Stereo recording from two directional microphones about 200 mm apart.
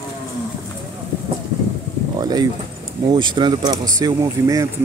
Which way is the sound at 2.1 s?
20° right (ahead or behind).